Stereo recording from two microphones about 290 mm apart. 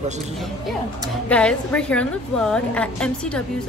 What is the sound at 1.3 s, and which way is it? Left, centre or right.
A woman's voice, centre.